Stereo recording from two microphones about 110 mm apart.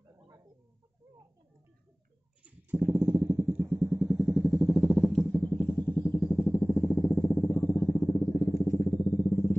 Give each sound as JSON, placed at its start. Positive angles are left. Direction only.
{"t": 2.4, "sound": "a sound", "side_deg": -15}
{"t": 3.7, "sound": "vehicle", "side_deg": -10}
{"t": 8.1, "sound": "vehicle", "side_deg": 30}